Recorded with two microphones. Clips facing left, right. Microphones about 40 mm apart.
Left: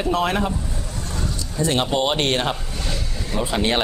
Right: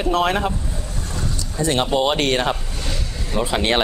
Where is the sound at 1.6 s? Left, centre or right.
Right.